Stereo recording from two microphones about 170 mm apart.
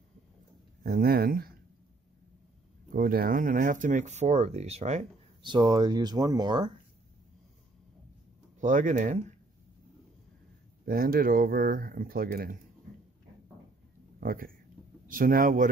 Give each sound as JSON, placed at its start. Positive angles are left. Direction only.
{"t": 0.8, "sound": "speech", "side_deg": -60}
{"t": 2.9, "sound": "speech", "side_deg": -60}
{"t": 5.4, "sound": "speech", "side_deg": -25}
{"t": 8.5, "sound": "speech", "side_deg": -45}
{"t": 10.9, "sound": "speech", "side_deg": -60}
{"t": 14.2, "sound": "speech", "side_deg": -55}